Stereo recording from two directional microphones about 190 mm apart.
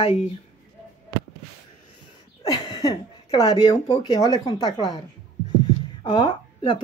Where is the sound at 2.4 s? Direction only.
20° left (ahead or behind).